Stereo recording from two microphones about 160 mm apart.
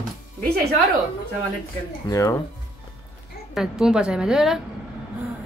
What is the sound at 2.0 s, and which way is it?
Speech, 20° left (ahead or behind).